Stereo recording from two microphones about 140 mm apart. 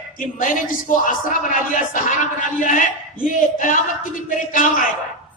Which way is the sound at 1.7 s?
70° left (ahead or behind).